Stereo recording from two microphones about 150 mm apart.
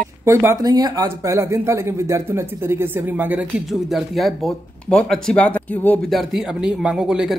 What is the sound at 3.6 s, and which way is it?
Speech, centre (ahead or behind).